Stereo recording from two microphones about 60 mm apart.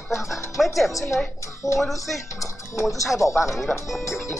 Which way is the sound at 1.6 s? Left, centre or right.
Left.